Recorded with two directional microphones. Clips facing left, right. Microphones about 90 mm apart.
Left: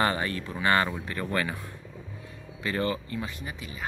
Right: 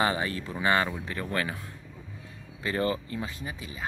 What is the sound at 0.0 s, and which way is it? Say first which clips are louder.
Speech: even; 10° right (ahead or behind).